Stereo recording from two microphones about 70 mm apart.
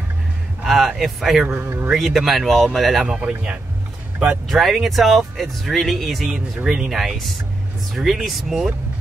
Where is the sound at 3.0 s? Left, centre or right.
Centre.